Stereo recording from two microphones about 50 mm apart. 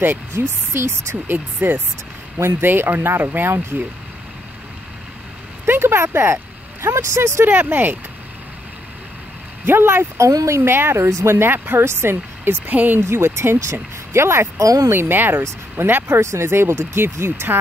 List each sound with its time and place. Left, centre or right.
0.3 s speech: right
1.2 s speech: right
5.7 s speech: right
7.4 s speech: right
9.7 s speech: right
10.1 s speech: right
11.8 s speech: right
12.6 s speech: right
13.0 s speech: right
13.6 s speech: right
14.9 s speech: right
15.8 s speech: right
16.4 s speech: right